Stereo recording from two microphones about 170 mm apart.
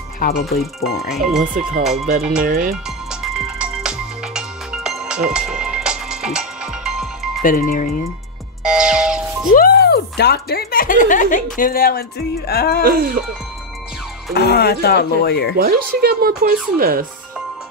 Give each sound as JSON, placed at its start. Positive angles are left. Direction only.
{"t": 1.1, "sound": "music", "side_deg": 0}
{"t": 1.4, "sound": "speech", "side_deg": -55}
{"t": 1.8, "sound": "music", "side_deg": 0}
{"t": 2.0, "sound": "speech", "side_deg": -55}
{"t": 3.3, "sound": "music", "side_deg": -5}
{"t": 7.4, "sound": "speech", "side_deg": 55}
{"t": 8.6, "sound": "music", "side_deg": -5}
{"t": 9.5, "sound": "speech", "side_deg": 65}
{"t": 12.8, "sound": "speech", "side_deg": -60}
{"t": 14.3, "sound": "speech", "side_deg": 70}
{"t": 15.5, "sound": "speech", "side_deg": -65}